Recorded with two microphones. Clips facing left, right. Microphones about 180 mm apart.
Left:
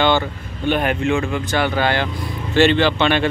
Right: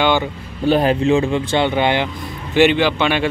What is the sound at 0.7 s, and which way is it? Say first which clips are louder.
Speech: right 4 dB; 35° right (ahead or behind).